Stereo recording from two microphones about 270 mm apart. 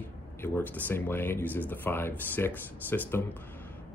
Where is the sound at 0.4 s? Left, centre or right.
Centre.